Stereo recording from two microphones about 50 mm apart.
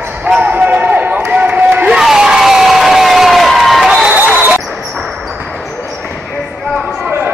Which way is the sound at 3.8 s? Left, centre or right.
Centre.